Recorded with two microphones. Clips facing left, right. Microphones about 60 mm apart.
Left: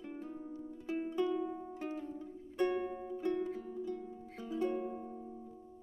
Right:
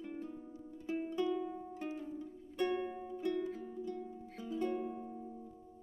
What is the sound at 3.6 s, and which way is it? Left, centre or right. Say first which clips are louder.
Music: left 1 dB; centre.